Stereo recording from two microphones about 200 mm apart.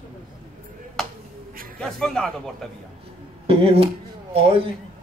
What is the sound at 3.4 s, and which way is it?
Speech, 30° right (ahead or behind).